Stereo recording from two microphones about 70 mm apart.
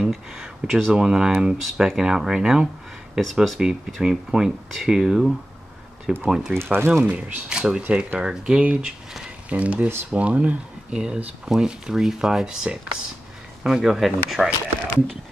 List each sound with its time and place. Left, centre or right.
0.0 s a sound: centre
0.9 s speech: centre
6.6 s speech: right
7.4 s speech: centre
9.5 s speech: centre